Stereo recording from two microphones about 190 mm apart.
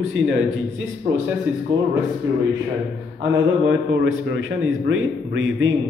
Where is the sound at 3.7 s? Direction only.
90° right.